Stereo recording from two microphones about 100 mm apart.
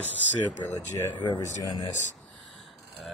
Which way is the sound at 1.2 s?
45° left (ahead or behind).